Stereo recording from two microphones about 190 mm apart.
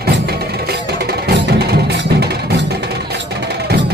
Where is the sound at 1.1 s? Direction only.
55° right (ahead or behind).